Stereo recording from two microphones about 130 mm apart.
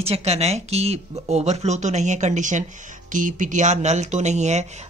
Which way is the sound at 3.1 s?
85° right.